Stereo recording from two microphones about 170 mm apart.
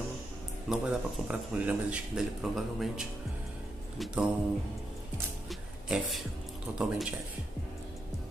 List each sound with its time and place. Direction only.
0.7 s speech: 5° right (ahead or behind)
5.5 s a sound: centre (ahead or behind)
6.7 s speech: centre (ahead or behind)